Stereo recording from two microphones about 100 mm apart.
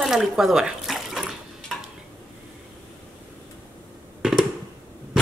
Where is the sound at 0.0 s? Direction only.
5° right (ahead or behind).